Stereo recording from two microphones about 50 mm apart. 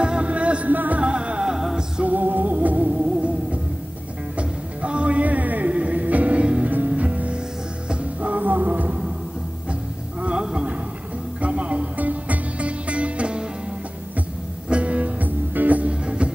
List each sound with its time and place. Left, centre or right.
0.0 s music: right
2.0 s music: right
4.4 s music: right
10.2 s music: centre
11.4 s music: right
14.7 s music: right